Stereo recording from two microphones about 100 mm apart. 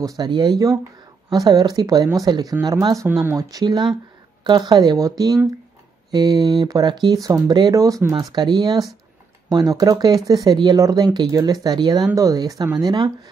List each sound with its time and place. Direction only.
0.0 s speech: 40° right (ahead or behind)
0.3 s speech: 50° right (ahead or behind)
7.7 s speech: 35° right (ahead or behind)